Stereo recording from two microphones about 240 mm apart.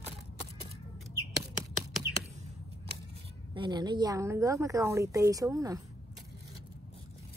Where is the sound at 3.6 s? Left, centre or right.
Centre.